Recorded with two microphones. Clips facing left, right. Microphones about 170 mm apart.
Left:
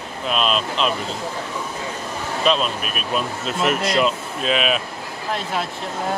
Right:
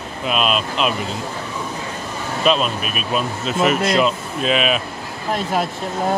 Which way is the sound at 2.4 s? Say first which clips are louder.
Right 2 dB; 5° right (ahead or behind).